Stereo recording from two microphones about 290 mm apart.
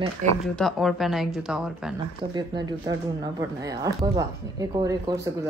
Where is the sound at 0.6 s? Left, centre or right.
Centre.